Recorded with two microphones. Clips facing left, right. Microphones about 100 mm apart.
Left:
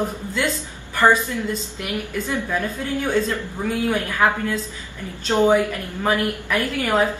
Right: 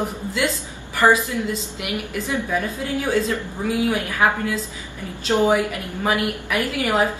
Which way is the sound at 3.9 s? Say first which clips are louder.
Even; 10° right (ahead or behind).